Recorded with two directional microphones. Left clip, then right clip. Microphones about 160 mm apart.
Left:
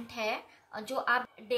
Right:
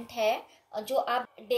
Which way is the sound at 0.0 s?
40° left (ahead or behind).